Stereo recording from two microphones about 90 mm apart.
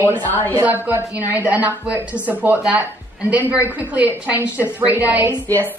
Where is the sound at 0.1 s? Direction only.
20° left (ahead or behind).